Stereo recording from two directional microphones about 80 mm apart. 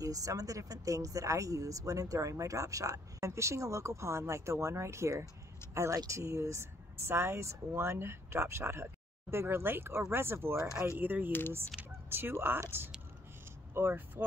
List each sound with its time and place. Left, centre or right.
0.0 s speech: right
11.8 s a sound: centre
12.1 s speech: right
13.7 s speech: right